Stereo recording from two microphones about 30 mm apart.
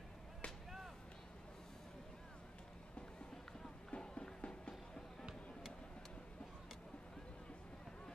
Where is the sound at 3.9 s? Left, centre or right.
Left.